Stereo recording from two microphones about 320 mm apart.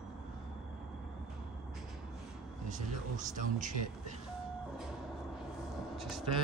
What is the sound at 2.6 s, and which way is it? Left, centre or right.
Speech, right.